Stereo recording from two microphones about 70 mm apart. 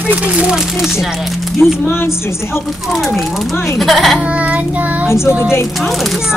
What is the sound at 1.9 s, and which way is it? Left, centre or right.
Speech, left.